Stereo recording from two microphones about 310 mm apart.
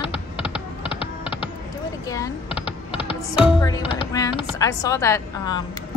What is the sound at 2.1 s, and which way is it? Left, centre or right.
Computer keyboard, centre.